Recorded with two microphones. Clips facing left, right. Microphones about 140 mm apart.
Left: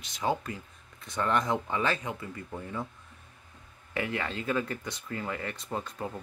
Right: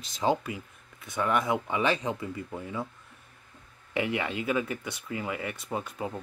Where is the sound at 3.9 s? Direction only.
15° right (ahead or behind).